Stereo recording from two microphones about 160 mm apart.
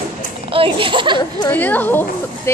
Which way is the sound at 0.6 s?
30° right (ahead or behind).